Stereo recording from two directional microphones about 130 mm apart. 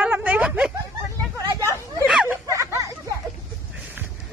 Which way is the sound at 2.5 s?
25° right (ahead or behind).